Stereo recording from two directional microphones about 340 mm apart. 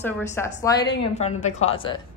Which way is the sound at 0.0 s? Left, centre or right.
Centre.